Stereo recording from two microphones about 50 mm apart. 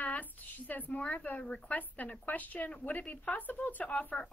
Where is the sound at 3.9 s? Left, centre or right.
Left.